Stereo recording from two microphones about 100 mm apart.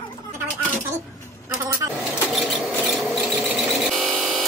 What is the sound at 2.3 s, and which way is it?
Tools, centre (ahead or behind).